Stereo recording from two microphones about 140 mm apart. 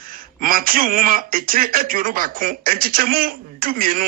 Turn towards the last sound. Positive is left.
turn(degrees=-90)